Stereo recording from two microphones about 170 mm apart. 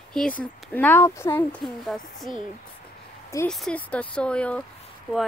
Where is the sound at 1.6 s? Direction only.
Centre (ahead or behind).